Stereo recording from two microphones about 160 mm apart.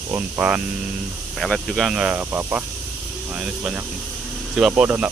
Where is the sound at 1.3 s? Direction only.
Centre (ahead or behind).